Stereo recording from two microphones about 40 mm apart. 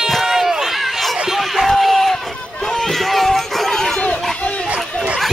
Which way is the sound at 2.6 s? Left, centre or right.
Centre.